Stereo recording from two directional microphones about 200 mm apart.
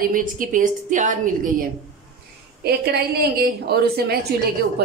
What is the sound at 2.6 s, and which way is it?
A woman's voice, 50° right (ahead or behind).